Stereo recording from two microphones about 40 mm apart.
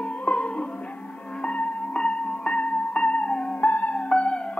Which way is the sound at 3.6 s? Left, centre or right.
Left.